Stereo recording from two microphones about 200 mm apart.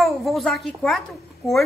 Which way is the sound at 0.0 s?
Centre (ahead or behind).